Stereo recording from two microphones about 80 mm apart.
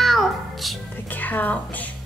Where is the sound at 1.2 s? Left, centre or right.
Left.